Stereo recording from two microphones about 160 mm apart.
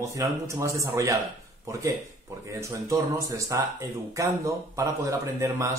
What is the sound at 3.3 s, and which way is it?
Speech, 20° right (ahead or behind).